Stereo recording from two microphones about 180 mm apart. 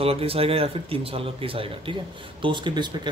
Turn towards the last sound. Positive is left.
turn(degrees=-25)  # may be behind; listen again after turning